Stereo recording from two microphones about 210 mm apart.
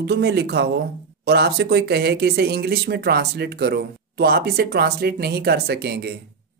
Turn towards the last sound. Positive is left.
turn(degrees=-50)  # may be behind; listen again after turning